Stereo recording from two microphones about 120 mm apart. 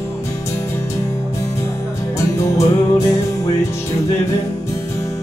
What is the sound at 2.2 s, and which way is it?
Music, 25° left (ahead or behind).